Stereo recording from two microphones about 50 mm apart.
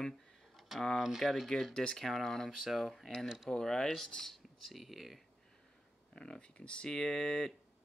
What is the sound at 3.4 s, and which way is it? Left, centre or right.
Speech, centre.